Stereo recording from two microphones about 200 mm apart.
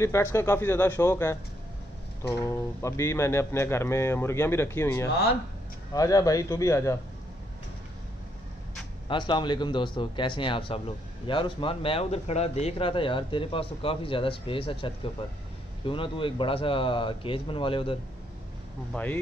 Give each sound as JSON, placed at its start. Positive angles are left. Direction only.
{"t": 0.0, "sound": "speech", "side_deg": 15}
{"t": 9.1, "sound": "speech", "side_deg": 25}
{"t": 18.9, "sound": "speech", "side_deg": 5}